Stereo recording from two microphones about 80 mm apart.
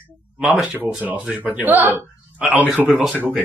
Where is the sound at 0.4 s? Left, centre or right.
Centre.